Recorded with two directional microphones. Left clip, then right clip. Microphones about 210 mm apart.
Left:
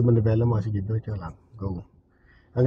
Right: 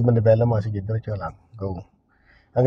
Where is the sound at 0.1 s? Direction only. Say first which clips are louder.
Right 7 dB; 55° right (ahead or behind).